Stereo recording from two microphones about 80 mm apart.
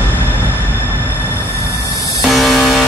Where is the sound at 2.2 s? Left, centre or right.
Centre.